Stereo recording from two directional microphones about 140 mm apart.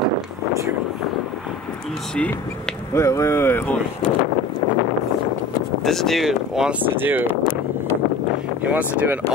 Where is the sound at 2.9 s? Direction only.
20° left (ahead or behind).